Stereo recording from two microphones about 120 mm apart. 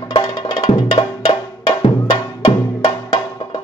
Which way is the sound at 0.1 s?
45° left (ahead or behind).